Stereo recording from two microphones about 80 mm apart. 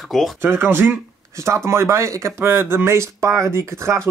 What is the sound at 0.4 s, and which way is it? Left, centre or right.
Speech, right.